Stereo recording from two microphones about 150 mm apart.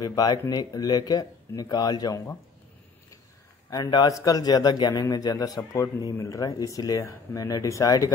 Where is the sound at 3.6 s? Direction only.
25° left (ahead or behind).